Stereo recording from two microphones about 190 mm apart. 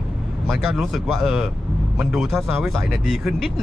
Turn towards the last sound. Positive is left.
turn(degrees=0)  # may be behind; listen again after turning